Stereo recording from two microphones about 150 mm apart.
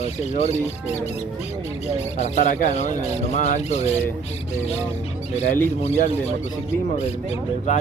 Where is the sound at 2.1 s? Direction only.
50° left (ahead or behind).